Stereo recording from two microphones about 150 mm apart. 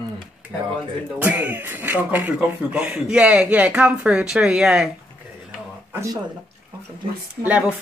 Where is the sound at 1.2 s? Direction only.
10° right (ahead or behind).